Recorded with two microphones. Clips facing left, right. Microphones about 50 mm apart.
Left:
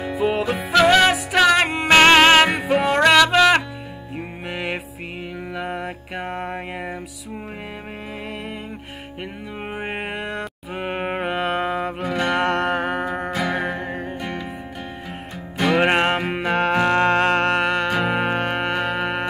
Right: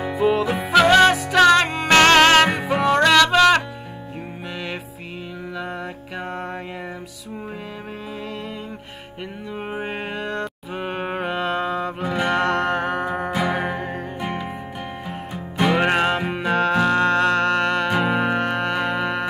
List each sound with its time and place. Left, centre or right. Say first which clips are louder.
0.0 s music: right 2 dB; centre
5.7 s music: left 2 dB; left
6.2 s music: left 1 dB; centre
9.7 s music: left 1 dB; left
10.2 s mantra: right 2 dB; centre
10.8 s music: left 1 dB; left
12.0 s music: right 1 dB; centre
12.4 s music: even; centre
14.2 s music: right 2 dB; centre
15.8 s music: left 1 dB; left
16.2 s music: even; centre
17.6 s music: even; centre
18.2 s music: right 1 dB; left
18.8 s music: even; centre